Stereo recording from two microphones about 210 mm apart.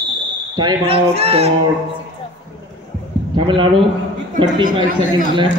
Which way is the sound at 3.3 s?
25° right (ahead or behind).